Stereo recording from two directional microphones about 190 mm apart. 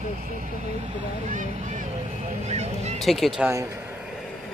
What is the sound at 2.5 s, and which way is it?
Honk, 35° right (ahead or behind).